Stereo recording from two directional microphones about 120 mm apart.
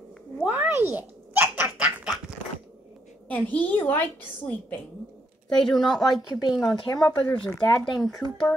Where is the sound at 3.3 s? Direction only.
15° left (ahead or behind).